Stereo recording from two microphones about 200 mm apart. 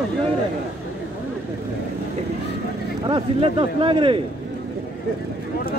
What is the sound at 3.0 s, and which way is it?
A man's voice, 25° right (ahead or behind).